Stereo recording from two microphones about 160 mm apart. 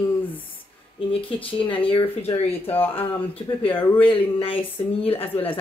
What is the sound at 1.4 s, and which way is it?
Speech, 35° left (ahead or behind).